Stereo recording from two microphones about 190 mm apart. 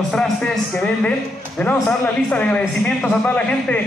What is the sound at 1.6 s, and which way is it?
A man's voice, 5° left (ahead or behind).